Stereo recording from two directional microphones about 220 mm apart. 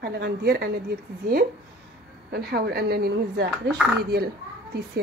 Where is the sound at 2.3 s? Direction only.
45° right (ahead or behind).